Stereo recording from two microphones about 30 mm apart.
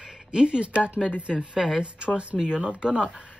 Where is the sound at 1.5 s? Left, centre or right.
Centre.